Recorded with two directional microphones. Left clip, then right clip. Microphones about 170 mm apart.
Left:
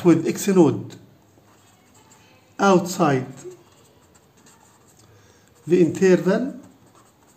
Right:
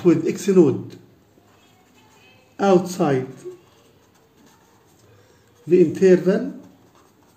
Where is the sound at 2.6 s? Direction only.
25° left (ahead or behind).